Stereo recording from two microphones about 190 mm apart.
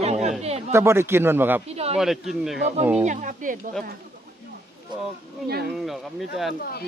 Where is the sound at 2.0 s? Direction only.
Centre (ahead or behind).